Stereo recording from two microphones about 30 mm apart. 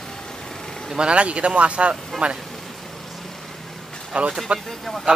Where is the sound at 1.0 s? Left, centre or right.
Right.